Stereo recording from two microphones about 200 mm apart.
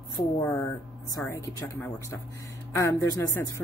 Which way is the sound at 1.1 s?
15° left (ahead or behind).